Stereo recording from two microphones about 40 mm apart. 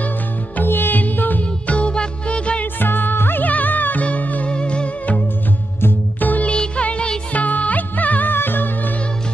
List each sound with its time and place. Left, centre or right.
0.7 s music: left
1.7 s music: left
2.6 s music: left
3.4 s music: left
4.5 s music: left
6.1 s music: left
6.4 s music: left
7.3 s music: left